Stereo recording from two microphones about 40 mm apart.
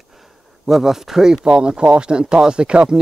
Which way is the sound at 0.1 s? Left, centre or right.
Centre.